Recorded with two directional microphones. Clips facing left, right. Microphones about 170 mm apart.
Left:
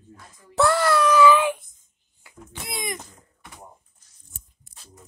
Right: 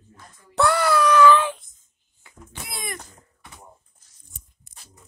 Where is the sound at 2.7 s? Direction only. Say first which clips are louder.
Left 4 dB; 15° left (ahead or behind).